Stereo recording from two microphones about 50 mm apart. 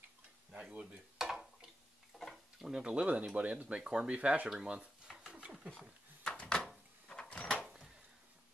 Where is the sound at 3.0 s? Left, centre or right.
Right.